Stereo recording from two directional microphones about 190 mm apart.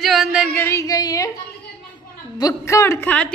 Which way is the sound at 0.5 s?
15° left (ahead or behind).